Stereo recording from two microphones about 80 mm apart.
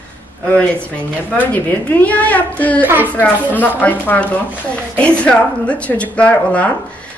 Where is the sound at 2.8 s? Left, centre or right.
Right.